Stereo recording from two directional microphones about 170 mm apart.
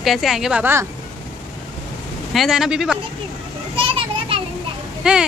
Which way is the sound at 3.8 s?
30° right (ahead or behind).